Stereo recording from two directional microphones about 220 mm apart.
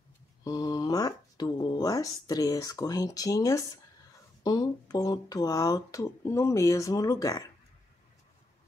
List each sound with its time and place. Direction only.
0.4 s speech: 15° left (ahead or behind)